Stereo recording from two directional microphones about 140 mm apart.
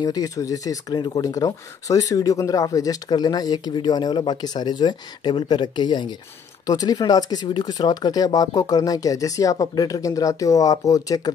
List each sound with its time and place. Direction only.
0.0 s speech: 25° left (ahead or behind)